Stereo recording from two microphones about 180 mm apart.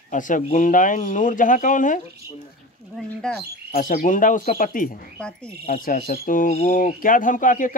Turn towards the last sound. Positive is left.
turn(degrees=45)  # may be behind; listen again after turning